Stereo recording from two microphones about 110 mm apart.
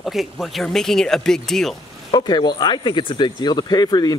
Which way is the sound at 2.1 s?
40° left (ahead or behind).